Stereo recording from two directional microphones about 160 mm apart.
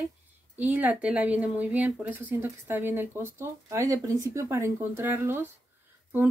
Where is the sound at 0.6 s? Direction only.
10° right (ahead or behind).